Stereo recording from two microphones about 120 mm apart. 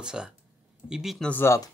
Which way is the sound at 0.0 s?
5° right (ahead or behind).